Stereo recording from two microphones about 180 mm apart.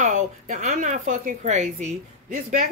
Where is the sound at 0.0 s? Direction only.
45° right (ahead or behind).